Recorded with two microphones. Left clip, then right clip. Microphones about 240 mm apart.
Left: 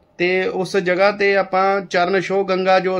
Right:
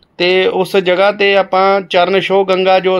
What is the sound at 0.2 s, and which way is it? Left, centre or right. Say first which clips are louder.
A man's voice: right 7 dB; right.